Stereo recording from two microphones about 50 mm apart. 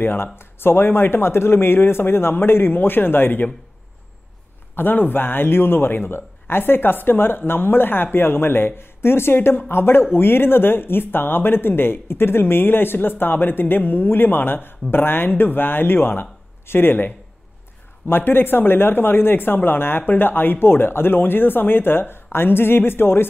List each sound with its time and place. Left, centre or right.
0.0 s speech: left
4.7 s speech: left